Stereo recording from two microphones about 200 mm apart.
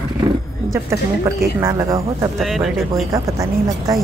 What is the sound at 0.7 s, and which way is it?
A woman's voice, 15° right (ahead or behind).